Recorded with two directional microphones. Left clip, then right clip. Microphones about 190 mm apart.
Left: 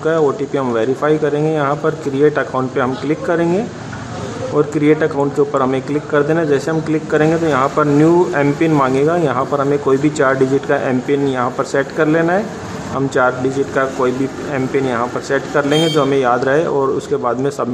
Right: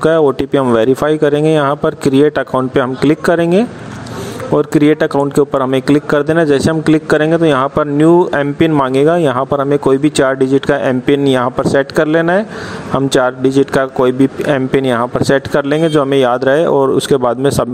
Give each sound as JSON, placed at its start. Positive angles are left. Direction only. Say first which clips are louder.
{"t": 0.0, "sound": "speech", "louder": "right 4 dB", "side_deg": -40}